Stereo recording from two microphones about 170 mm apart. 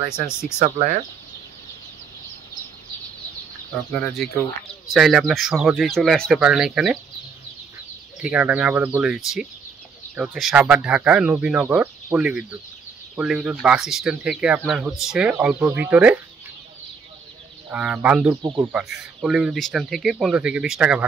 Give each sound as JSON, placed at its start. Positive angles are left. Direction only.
{"t": 3.9, "sound": "speech", "side_deg": 5}
{"t": 8.2, "sound": "speech", "side_deg": -10}
{"t": 17.6, "sound": "speech", "side_deg": -10}
{"t": 18.4, "sound": "speech", "side_deg": -25}
{"t": 18.7, "sound": "speech", "side_deg": -5}